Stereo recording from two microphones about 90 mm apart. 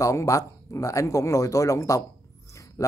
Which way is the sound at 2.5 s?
35° left (ahead or behind).